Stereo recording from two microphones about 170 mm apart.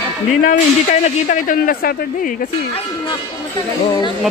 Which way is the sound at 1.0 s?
45° left (ahead or behind).